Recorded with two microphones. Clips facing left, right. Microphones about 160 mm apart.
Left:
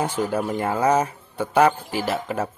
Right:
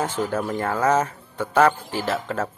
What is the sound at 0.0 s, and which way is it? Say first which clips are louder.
Speech: left 1 dB; 10° left (ahead or behind).